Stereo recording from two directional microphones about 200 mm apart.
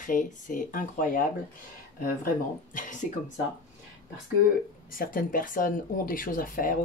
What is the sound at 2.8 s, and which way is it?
Speech, 40° left (ahead or behind).